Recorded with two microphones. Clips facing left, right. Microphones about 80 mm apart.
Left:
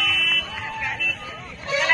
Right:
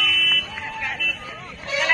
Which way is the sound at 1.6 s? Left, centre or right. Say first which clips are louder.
Left 1 dB; left.